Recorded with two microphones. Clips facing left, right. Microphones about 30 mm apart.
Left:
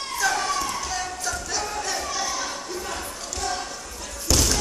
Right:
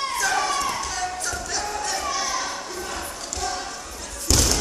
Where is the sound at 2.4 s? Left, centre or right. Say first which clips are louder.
Right 1 dB; centre.